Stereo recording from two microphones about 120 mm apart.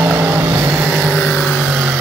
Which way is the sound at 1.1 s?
15° left (ahead or behind).